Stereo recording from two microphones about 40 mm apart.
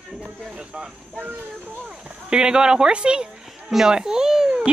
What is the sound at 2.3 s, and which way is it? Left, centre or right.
Speech, right.